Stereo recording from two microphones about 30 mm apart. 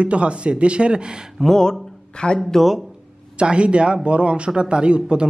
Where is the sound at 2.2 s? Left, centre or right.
Left.